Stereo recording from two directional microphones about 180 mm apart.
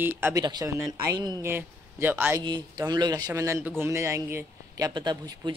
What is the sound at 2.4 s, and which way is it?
A man's voice, 25° right (ahead or behind).